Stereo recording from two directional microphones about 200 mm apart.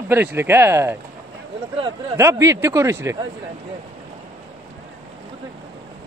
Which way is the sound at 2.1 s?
15° right (ahead or behind).